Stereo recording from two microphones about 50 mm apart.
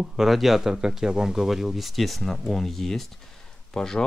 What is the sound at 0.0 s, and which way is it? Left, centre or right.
Speech, centre.